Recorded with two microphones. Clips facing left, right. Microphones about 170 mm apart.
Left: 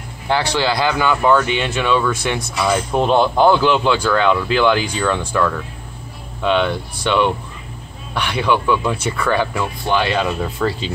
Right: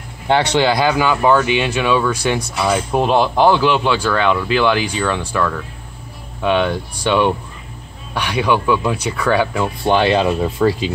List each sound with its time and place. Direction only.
0.3 s speech: 20° right (ahead or behind); by 5.5 s centre (ahead or behind)
6.4 s speech: 15° right (ahead or behind)
9.6 s speech: 25° right (ahead or behind)